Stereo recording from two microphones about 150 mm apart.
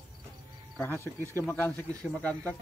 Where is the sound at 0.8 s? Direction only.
15° left (ahead or behind).